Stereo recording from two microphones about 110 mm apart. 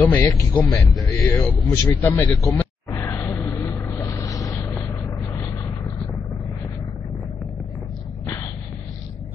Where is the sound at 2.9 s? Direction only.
30° left (ahead or behind).